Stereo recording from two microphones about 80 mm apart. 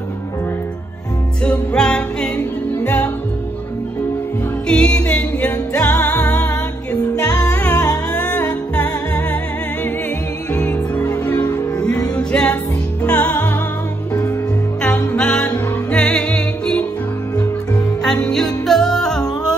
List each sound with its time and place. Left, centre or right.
1.4 s music: centre
4.6 s music: centre
12.3 s music: centre
14.8 s music: centre
18.0 s music: centre